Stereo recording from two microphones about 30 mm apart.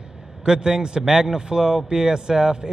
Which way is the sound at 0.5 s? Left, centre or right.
Right.